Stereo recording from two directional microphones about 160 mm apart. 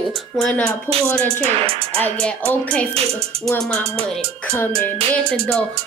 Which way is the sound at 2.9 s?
40° right (ahead or behind).